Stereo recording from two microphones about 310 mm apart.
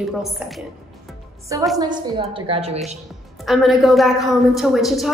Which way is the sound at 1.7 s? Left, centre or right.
Centre.